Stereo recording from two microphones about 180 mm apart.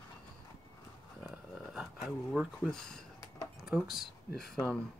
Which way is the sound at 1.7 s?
Centre (ahead or behind).